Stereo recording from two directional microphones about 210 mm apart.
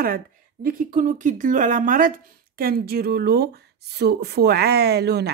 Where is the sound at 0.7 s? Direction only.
40° right (ahead or behind).